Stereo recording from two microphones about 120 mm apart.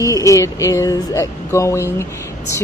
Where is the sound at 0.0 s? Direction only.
30° left (ahead or behind).